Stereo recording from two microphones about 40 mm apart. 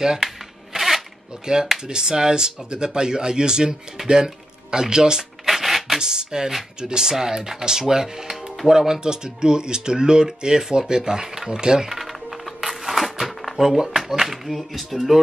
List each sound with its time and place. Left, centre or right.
0.7 s zipper: centre
1.4 s speech: centre
5.4 s a sound: centre
5.9 s speech: centre
11.9 s music: centre
12.6 s a sound: centre
13.6 s speech: centre